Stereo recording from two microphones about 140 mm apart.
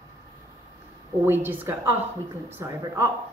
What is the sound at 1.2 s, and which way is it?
Speech, 15° right (ahead or behind).